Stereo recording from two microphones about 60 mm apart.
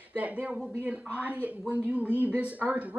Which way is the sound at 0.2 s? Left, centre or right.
Right.